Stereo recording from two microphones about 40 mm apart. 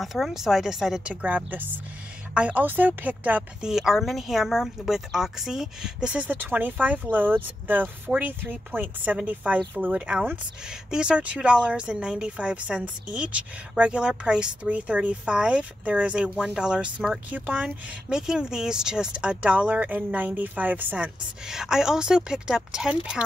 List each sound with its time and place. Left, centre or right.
0.0 s speech: centre
1.0 s speech: right
2.3 s speech: right
2.6 s speech: right
3.6 s speech: centre
6.1 s speech: right
10.7 s a woman's voice: right
16.4 s a woman's voice: right
17.3 s speech: right
18.1 s speech: centre; by 21.1 s right
21.5 s speech: centre